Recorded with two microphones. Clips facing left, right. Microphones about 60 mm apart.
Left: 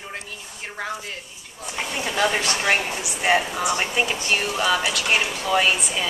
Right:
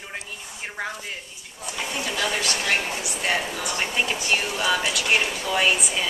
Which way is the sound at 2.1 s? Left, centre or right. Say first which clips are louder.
Left 5 dB; left.